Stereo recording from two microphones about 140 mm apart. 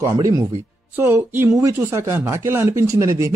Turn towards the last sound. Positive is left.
turn(degrees=-20)  # may be behind; listen again after turning